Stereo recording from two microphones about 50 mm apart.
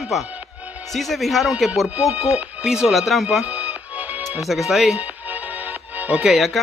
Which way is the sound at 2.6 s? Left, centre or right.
Centre.